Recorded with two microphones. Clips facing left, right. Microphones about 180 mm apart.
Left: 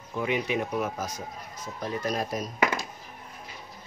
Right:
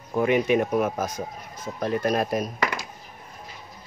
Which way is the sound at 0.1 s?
55° right (ahead or behind).